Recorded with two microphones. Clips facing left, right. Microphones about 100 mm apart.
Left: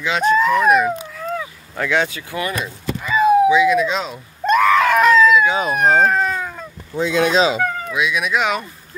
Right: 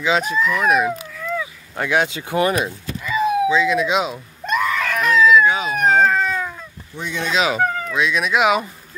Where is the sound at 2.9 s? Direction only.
45° left (ahead or behind).